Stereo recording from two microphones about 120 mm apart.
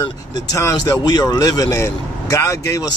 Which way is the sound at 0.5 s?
25° left (ahead or behind).